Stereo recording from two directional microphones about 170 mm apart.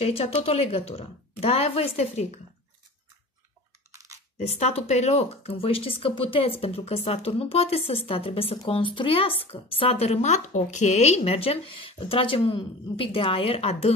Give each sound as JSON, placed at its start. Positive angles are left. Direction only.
{"t": 0.0, "sound": "speech", "side_deg": 35}
{"t": 3.9, "sound": "crunch", "side_deg": -20}
{"t": 4.4, "sound": "speech", "side_deg": 40}